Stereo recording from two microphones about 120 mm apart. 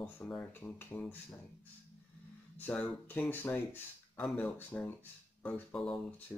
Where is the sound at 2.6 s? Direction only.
15° left (ahead or behind).